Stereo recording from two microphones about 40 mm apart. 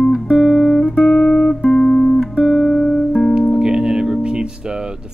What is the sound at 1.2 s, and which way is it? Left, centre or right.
Music, left.